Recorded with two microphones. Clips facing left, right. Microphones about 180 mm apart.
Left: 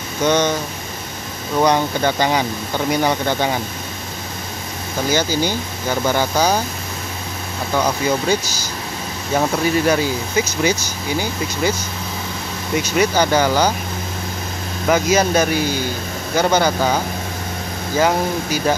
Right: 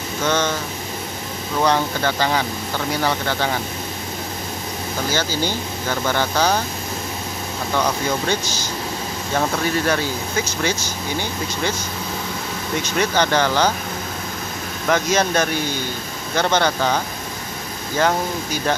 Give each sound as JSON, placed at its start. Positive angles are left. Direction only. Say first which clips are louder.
{"t": 0.2, "sound": "speech", "louder": "left 4 dB", "side_deg": 15}
{"t": 1.6, "sound": "speech", "louder": "left 3 dB", "side_deg": 15}
{"t": 5.1, "sound": "speech", "louder": "left 5 dB", "side_deg": 15}
{"t": 7.7, "sound": "speech", "louder": "left 3 dB", "side_deg": 10}
{"t": 9.8, "sound": "speech", "louder": "left 4 dB", "side_deg": 10}
{"t": 12.9, "sound": "speech", "louder": "left 3 dB", "side_deg": 10}
{"t": 14.9, "sound": "speech", "louder": "left 3 dB", "side_deg": 10}